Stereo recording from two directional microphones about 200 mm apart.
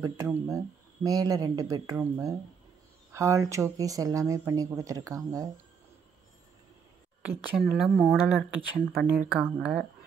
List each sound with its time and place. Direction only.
0.0 s speech: 15° right (ahead or behind)
7.5 s speech: 5° right (ahead or behind)